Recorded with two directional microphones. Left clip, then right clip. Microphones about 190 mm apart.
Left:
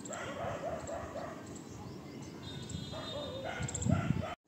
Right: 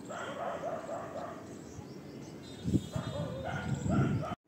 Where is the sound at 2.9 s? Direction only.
5° left (ahead or behind).